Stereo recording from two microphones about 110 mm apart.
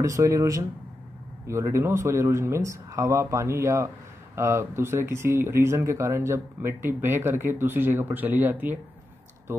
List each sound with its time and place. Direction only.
0.0 s speech: 30° right (ahead or behind)